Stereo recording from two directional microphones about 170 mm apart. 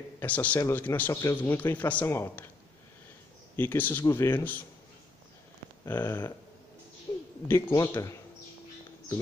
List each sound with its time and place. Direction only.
0.2 s a man's voice: 10° left (ahead or behind)
3.5 s a man's voice: 10° left (ahead or behind)
5.9 s a man's voice: 15° left (ahead or behind)
7.1 s a sound: 25° left (ahead or behind)
7.4 s a man's voice: 15° left (ahead or behind)